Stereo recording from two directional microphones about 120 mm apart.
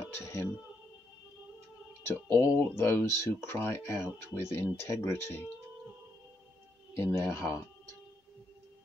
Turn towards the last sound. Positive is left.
turn(degrees=25)  # may be behind; listen again after turning